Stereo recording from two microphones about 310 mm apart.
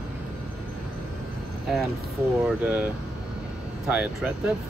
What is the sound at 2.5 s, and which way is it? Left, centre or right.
Speech, centre.